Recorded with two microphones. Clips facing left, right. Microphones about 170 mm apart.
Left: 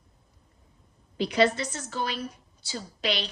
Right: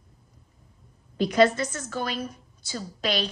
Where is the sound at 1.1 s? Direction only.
45° right (ahead or behind).